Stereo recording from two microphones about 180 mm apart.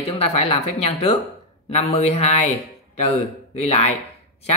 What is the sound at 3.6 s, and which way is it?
Speech, 35° left (ahead or behind).